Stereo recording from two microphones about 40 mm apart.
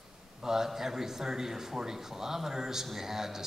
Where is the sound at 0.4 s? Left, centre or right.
Centre.